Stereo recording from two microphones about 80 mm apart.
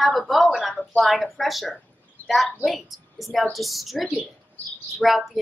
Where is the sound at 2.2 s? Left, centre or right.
Left.